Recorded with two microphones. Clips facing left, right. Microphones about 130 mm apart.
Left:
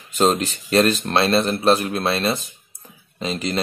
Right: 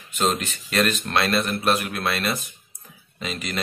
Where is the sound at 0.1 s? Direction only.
35° left (ahead or behind).